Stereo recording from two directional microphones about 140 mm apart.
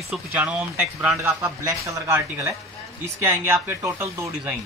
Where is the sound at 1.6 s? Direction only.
20° right (ahead or behind).